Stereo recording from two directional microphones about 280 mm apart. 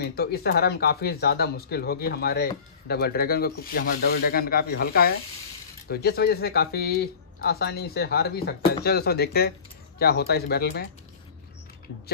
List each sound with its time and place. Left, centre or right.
0.0 s speech: left